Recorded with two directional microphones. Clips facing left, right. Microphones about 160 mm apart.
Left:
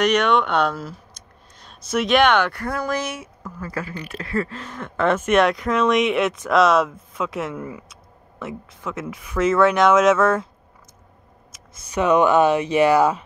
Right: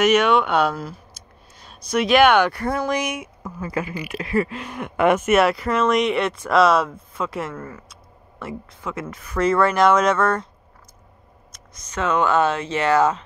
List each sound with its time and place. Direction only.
0.0 s speech: 5° right (ahead or behind)
7.5 s speech: 15° left (ahead or behind)
7.9 s speech: centre (ahead or behind)
11.5 s speech: 15° left (ahead or behind)